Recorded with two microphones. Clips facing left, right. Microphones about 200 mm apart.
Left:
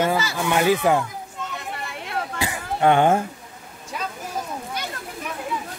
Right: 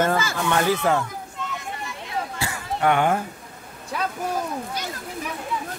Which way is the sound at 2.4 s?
20° left (ahead or behind).